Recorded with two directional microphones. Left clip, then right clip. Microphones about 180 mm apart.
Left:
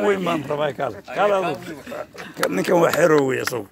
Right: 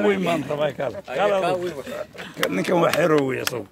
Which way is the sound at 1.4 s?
55° right (ahead or behind).